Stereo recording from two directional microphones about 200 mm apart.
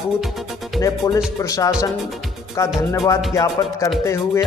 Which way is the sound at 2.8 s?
15° left (ahead or behind).